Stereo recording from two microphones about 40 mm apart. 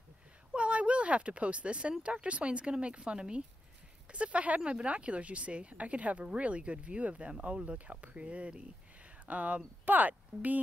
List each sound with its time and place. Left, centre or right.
0.6 s a woman's voice: right